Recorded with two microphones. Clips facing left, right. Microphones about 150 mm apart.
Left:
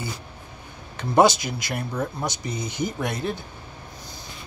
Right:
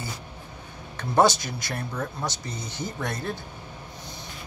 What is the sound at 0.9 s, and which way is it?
Speech, 15° left (ahead or behind).